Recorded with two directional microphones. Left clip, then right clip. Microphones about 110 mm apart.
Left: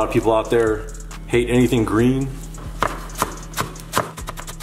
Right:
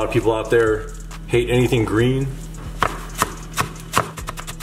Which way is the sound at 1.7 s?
20° left (ahead or behind).